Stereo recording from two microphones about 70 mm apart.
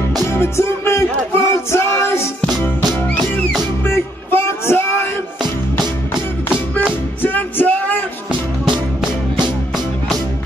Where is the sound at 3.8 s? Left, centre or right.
Left.